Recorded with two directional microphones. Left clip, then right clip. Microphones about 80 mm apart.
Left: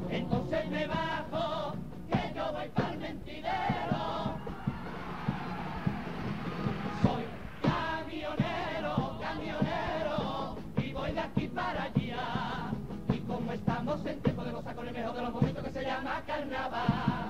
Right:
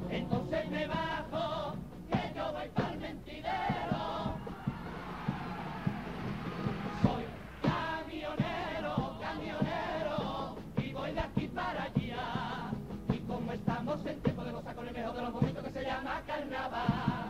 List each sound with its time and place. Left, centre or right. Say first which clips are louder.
0.1 s music: left 2 dB; left
5.9 s a sound: left 2 dB; left
13.1 s music: left 2 dB; left
15.0 s chant: left 2 dB; left